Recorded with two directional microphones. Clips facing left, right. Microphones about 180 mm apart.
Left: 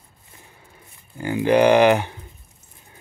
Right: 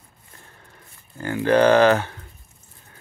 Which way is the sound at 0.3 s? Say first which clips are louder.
Left 1 dB; 10° left (ahead or behind).